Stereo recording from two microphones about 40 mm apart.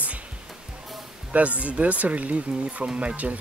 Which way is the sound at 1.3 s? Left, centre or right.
Right.